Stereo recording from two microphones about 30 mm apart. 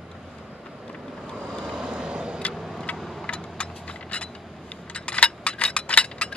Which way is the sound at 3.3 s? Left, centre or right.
Left.